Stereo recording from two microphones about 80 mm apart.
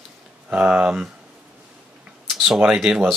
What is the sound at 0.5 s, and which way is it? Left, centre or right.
Speech, centre.